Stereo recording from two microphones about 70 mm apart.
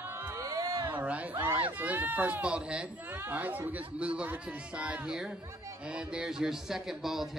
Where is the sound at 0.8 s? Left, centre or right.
Right.